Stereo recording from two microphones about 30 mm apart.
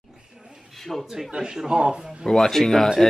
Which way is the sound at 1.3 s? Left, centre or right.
Right.